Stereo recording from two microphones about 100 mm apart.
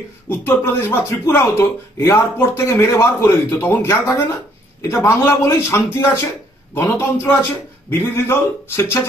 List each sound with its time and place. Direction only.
0.3 s speech: 25° left (ahead or behind)